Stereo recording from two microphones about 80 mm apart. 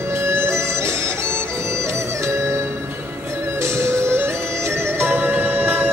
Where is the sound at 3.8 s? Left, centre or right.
Right.